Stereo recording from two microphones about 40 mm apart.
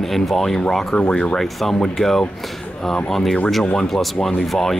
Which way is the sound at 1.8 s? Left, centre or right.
Centre.